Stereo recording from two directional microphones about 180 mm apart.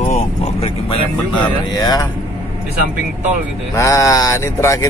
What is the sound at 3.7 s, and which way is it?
Mantra, 15° left (ahead or behind).